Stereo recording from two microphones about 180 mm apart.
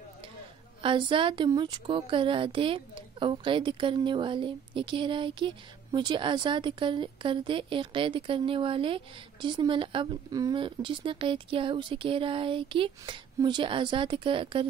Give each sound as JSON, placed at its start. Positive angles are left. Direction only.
{"t": 0.8, "sound": "a woman's voice", "side_deg": -25}